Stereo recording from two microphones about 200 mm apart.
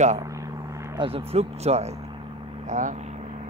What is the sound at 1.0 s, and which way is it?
Speech, 30° right (ahead or behind).